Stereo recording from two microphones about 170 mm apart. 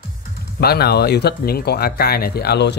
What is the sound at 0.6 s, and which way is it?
Speech, 70° left (ahead or behind).